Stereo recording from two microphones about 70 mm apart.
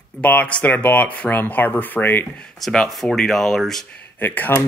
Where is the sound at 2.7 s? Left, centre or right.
Centre.